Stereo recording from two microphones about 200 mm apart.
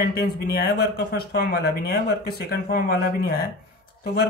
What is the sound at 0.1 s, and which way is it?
Speech, 50° left (ahead or behind).